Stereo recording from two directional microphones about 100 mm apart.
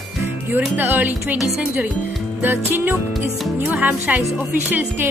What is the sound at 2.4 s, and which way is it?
Speech, 20° right (ahead or behind).